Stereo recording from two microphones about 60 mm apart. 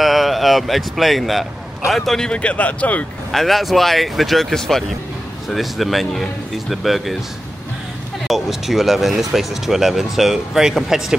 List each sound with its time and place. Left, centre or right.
0.0 s speech: centre
2.3 s speech: left
3.3 s speech: centre
8.3 s speech: centre